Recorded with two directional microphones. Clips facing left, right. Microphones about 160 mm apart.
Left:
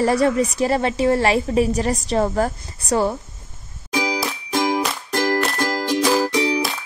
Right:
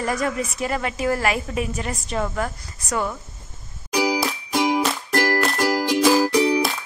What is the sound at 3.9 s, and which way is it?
Music, 5° right (ahead or behind).